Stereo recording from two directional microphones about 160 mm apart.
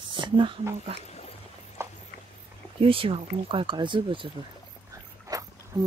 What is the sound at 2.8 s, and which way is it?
Speech, 35° right (ahead or behind).